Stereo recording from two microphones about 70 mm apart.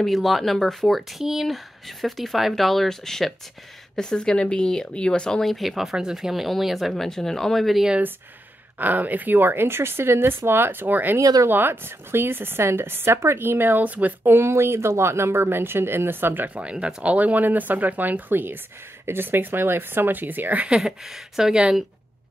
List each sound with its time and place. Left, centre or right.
0.0 s speech: centre
8.7 s a woman's voice: right
11.1 s speech: right
11.4 s a woman's voice: right
20.6 s speech: centre